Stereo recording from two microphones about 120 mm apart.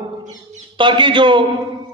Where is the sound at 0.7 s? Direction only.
40° right (ahead or behind).